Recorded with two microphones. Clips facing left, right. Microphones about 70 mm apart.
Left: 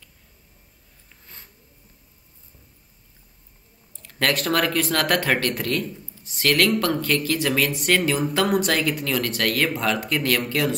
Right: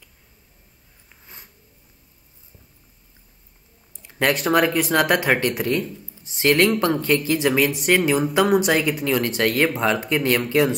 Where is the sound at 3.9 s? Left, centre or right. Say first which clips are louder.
Right 2 dB; centre.